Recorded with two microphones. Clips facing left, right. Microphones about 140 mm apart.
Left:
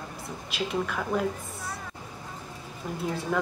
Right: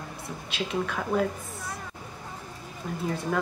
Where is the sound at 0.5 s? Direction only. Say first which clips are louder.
Even; 5° left (ahead or behind).